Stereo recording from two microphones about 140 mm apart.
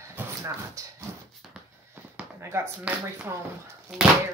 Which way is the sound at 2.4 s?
15° right (ahead or behind).